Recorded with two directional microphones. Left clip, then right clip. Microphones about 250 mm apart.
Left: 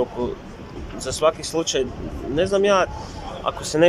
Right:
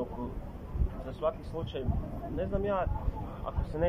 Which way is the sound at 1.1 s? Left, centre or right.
Left.